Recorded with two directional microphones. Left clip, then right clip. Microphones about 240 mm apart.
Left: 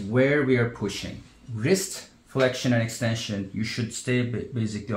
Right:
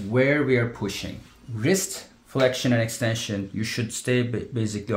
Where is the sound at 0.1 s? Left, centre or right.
Right.